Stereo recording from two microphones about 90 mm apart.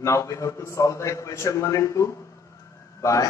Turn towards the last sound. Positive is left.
turn(degrees=35)  # may be behind; listen again after turning